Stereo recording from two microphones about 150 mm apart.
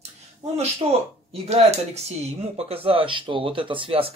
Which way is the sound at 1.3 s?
45° right (ahead or behind).